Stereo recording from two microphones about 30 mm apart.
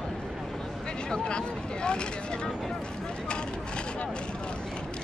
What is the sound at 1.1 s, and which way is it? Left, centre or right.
Speech, left.